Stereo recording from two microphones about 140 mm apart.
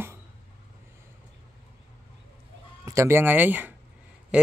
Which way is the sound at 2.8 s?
20° right (ahead or behind).